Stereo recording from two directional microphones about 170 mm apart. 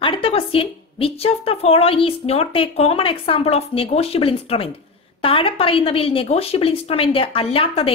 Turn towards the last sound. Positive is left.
turn(degrees=35)  # may be behind; listen again after turning